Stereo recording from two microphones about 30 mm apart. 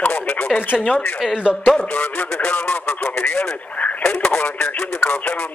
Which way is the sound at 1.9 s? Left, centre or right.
Left.